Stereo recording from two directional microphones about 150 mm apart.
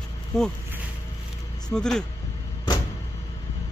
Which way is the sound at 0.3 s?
5° left (ahead or behind).